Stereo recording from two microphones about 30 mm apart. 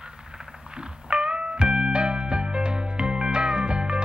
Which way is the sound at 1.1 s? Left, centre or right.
Right.